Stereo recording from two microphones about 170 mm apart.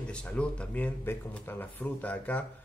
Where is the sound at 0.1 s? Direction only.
5° left (ahead or behind).